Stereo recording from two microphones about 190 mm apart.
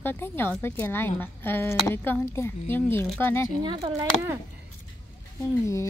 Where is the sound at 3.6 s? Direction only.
20° right (ahead or behind).